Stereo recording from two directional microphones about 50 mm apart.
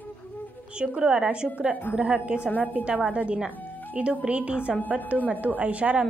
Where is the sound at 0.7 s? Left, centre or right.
Centre.